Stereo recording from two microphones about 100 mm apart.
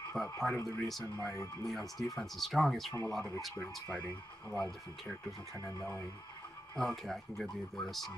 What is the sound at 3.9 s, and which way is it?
Speech, 15° left (ahead or behind).